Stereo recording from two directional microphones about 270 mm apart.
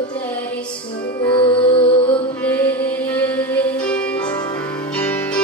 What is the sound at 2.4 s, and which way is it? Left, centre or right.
Music, centre.